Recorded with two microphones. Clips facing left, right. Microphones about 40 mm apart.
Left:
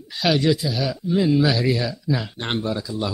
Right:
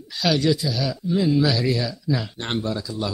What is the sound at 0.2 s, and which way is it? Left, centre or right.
Speech, centre.